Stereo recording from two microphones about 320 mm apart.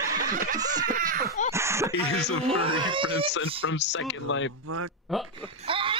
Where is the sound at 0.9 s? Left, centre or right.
Right.